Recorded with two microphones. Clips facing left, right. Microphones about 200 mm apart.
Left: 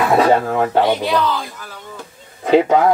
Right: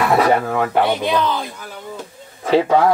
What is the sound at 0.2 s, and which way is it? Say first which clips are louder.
Speech: left 2 dB; 25° left (ahead or behind).